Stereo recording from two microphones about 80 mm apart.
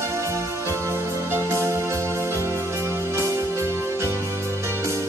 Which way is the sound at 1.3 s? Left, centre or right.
Right.